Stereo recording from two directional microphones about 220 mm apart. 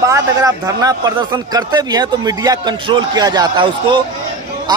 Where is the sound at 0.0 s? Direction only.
15° right (ahead or behind).